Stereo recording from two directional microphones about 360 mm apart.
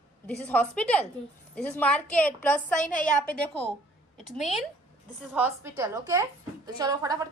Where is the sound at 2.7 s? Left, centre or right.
Left.